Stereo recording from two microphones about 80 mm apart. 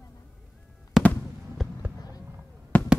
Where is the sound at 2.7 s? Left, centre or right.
Centre.